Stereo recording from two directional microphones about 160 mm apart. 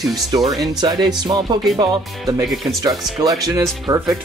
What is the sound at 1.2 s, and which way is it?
Speech, 25° right (ahead or behind).